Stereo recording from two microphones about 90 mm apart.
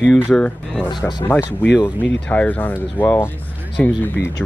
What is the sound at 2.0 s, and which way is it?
Speech, 15° left (ahead or behind).